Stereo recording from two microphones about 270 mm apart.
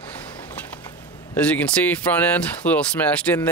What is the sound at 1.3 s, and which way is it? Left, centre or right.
Speech, centre.